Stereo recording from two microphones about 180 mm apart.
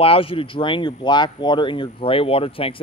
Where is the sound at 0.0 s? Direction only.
30° left (ahead or behind).